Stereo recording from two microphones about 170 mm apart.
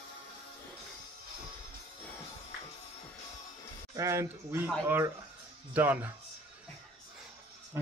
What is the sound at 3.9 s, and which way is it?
Speech, 20° right (ahead or behind).